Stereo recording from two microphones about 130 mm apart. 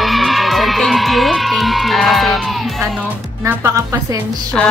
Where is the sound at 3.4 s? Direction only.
25° right (ahead or behind).